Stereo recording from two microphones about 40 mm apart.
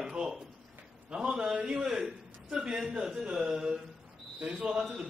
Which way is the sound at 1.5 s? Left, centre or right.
Right.